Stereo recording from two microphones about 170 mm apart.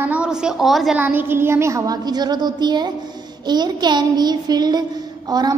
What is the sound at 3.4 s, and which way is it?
Child singing, 25° right (ahead or behind).